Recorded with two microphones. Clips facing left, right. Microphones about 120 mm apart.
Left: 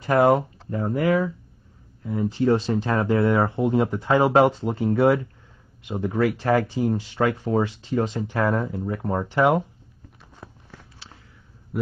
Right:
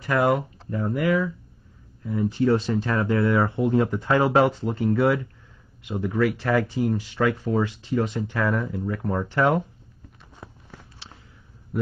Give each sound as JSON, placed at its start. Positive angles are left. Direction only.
{"t": 0.2, "sound": "speech", "side_deg": 35}
{"t": 10.3, "sound": "a sound", "side_deg": -10}
{"t": 11.7, "sound": "speech", "side_deg": 0}